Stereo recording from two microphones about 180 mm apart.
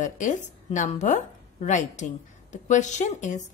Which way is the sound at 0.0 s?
45° left (ahead or behind).